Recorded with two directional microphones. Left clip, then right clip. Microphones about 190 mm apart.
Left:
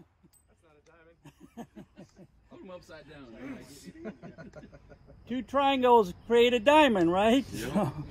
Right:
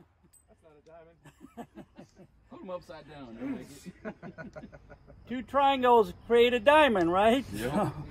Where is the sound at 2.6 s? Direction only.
55° right (ahead or behind).